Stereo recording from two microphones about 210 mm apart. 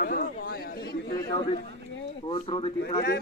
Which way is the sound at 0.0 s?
45° left (ahead or behind).